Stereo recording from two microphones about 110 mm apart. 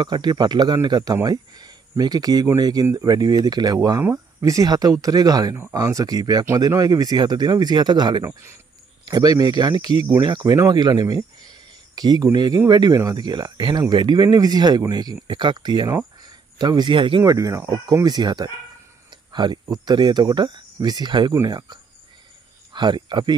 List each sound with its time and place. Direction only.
0.0 s speech: 40° right (ahead or behind)
16.2 s a sound: 40° right (ahead or behind)
17.2 s speech: 30° right (ahead or behind)
21.3 s speech: 30° right (ahead or behind)